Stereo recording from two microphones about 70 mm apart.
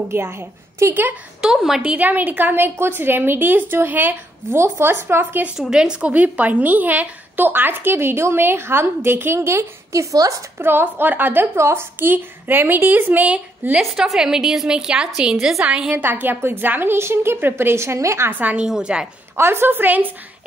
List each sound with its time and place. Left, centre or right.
0.1 s a woman's voice: right
1.4 s a woman's voice: centre
1.8 s a woman's voice: right
5.6 s a woman's voice: centre; by 11.4 s right
11.5 s a woman's voice: right
13.7 s a woman's voice: centre
15.9 s a woman's voice: right
18.3 s a woman's voice: right
18.7 s a woman's voice: centre
19.3 s a woman's voice: right